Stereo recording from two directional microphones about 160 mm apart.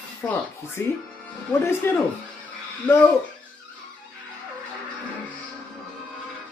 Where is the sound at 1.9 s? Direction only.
15° left (ahead or behind).